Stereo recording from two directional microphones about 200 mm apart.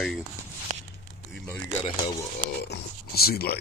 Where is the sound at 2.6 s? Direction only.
55° left (ahead or behind).